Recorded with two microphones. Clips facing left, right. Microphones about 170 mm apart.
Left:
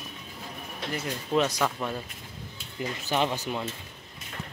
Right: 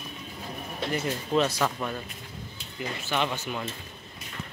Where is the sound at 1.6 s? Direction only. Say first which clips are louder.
Even; 5° left (ahead or behind).